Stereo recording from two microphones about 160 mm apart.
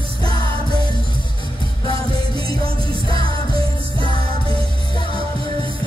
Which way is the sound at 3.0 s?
35° right (ahead or behind).